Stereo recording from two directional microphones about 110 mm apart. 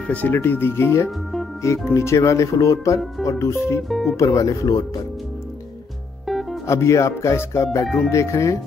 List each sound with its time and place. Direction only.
0.0 s speech: 15° left (ahead or behind)
3.9 s speech: centre (ahead or behind)
4.2 s speech: 30° left (ahead or behind)
6.2 s music: centre (ahead or behind)
6.6 s speech: 25° left (ahead or behind)
7.8 s speech: centre (ahead or behind)
8.1 s speech: 25° left (ahead or behind)